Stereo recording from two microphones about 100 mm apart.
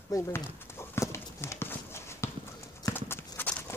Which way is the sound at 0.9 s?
25° left (ahead or behind).